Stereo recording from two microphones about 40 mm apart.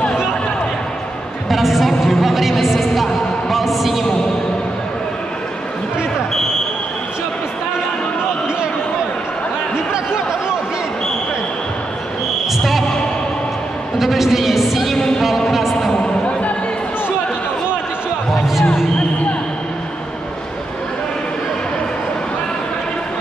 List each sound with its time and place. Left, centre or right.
1.5 s a woman's voice: centre
13.9 s a sound: centre
15.0 s music: centre
15.2 s chant: centre
16.0 s music: left
18.3 s music: centre